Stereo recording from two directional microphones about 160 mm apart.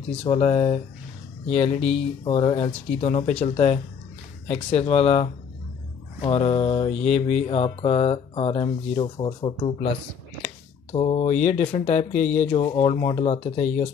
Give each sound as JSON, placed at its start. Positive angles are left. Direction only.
{"t": 0.2, "sound": "speech", "side_deg": 40}
{"t": 10.4, "sound": "a sound", "side_deg": 40}
{"t": 11.6, "sound": "speech", "side_deg": 40}
{"t": 12.4, "sound": "speech", "side_deg": 35}